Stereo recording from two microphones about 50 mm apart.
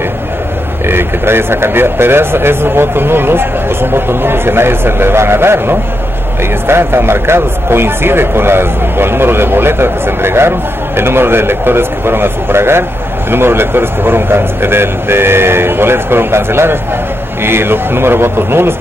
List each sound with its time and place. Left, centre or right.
0.8 s speech: right